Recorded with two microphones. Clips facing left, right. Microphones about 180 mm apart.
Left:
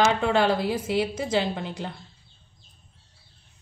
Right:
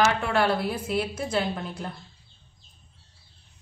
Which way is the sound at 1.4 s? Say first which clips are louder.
Left 2 dB; 20° left (ahead or behind).